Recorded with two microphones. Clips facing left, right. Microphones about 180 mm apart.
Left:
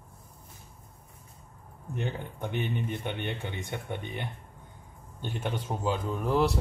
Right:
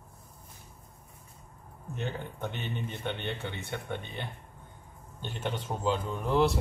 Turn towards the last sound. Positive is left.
turn(degrees=5)  # may be behind; listen again after turning